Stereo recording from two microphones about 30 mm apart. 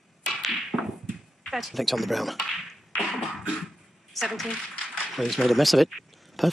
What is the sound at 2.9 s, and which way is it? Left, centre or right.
Beatboxing, left.